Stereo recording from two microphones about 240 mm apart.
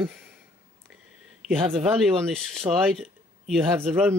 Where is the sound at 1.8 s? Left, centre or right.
Centre.